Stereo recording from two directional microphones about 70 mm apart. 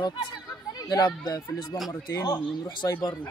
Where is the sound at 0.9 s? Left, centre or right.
Left.